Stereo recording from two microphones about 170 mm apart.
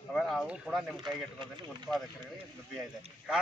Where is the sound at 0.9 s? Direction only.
25° right (ahead or behind).